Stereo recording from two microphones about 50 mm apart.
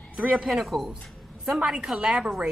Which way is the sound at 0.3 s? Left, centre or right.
Centre.